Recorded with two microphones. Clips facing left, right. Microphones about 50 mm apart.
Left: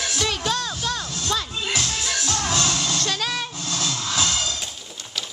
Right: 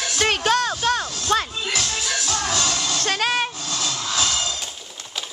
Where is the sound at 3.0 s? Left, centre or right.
Right.